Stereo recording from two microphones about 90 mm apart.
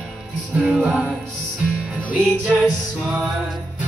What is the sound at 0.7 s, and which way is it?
Music, 10° right (ahead or behind).